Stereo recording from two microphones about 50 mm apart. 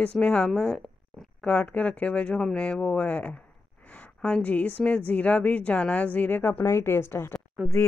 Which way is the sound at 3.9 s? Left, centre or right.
Left.